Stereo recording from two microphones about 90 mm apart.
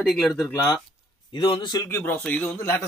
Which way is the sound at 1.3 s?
60° left (ahead or behind).